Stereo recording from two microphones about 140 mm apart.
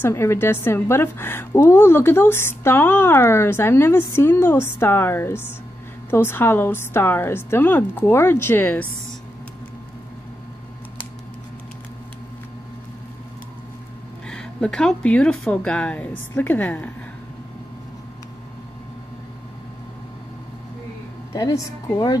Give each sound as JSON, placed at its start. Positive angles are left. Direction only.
{"t": 0.0, "sound": "a woman's voice", "side_deg": 20}
{"t": 14.2, "sound": "a woman's voice", "side_deg": 5}
{"t": 21.3, "sound": "speech", "side_deg": 25}